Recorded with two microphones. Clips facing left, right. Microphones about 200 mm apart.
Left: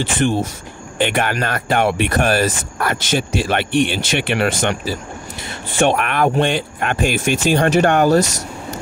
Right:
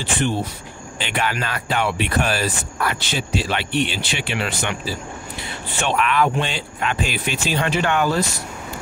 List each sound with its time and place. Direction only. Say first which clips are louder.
0.9 s speech: left 6 dB; 55° left (ahead or behind)
5.8 s speech: left 4 dB; 55° left (ahead or behind)
8.2 s speech: left 5 dB; 80° left